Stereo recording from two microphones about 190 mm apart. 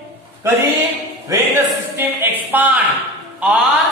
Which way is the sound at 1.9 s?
10° right (ahead or behind).